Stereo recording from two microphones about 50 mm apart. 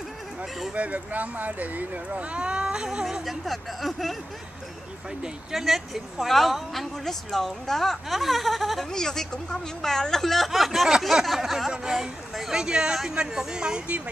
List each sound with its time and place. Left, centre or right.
0.7 s speech: right
3.3 s a woman's voice: centre
5.5 s a woman's voice: centre
11.0 s a sound: centre
11.7 s speech: centre; by 14.1 s right